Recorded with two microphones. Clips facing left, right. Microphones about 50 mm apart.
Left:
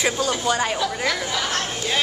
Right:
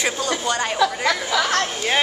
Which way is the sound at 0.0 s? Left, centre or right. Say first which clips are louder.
Left 1 dB; centre.